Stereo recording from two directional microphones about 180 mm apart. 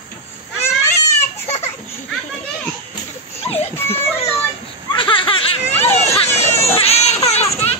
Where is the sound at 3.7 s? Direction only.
15° left (ahead or behind).